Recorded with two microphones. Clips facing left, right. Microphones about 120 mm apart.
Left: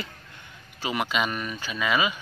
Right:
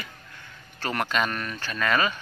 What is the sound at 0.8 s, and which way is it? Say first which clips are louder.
Speech: even; 5° left (ahead or behind).